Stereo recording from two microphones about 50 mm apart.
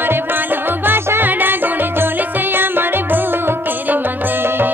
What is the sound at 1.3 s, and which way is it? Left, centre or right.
Music, right.